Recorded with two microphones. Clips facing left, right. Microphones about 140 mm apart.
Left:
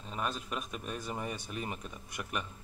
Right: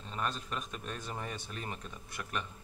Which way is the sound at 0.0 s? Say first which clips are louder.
Left 1 dB; 10° left (ahead or behind).